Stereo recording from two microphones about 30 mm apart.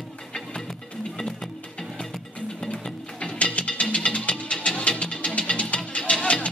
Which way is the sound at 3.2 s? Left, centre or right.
Left.